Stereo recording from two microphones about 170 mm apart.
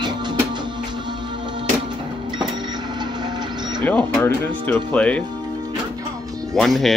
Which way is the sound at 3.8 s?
10° left (ahead or behind).